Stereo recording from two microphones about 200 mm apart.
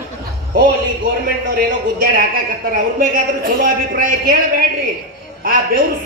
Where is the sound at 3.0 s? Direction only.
45° right (ahead or behind).